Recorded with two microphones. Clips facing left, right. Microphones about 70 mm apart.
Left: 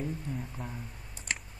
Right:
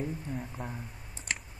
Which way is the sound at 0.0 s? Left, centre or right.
Centre.